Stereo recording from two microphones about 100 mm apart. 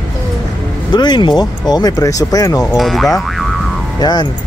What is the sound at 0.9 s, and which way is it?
Speech, 45° left (ahead or behind).